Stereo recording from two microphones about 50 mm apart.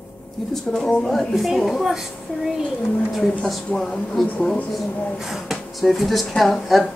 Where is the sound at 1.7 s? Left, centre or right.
Centre.